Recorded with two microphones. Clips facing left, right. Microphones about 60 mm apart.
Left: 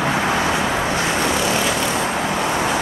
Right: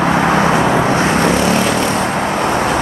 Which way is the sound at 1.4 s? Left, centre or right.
Centre.